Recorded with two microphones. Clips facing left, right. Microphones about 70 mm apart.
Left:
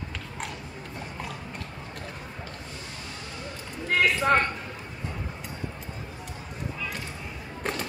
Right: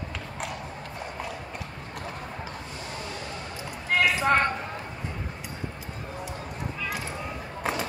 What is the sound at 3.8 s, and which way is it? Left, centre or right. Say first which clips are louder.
Speech: even; centre.